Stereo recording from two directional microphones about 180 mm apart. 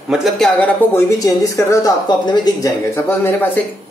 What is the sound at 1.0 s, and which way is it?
Speech, 15° left (ahead or behind).